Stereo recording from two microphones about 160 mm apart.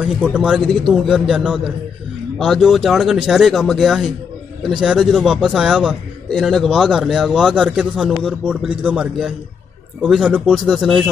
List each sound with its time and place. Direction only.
0.0 s a man's voice: 5° right (ahead or behind)